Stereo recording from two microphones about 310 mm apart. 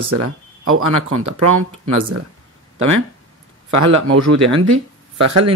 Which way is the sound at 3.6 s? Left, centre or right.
Right.